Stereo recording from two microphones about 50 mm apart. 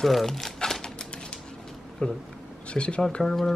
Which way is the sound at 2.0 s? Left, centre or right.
Left.